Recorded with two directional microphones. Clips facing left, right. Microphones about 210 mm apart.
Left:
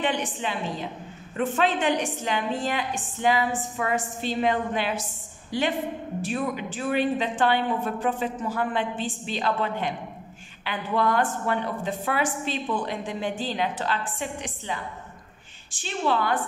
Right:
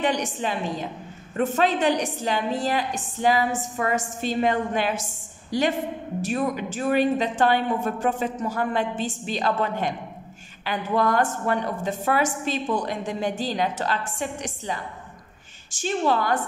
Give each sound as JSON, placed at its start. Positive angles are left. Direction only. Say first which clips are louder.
{"t": 0.0, "sound": "a woman's voice", "louder": "right 2 dB", "side_deg": -40}